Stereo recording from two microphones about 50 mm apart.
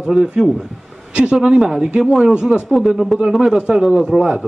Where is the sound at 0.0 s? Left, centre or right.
Centre.